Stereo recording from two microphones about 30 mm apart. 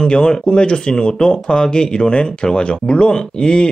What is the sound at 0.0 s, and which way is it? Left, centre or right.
Speech, left.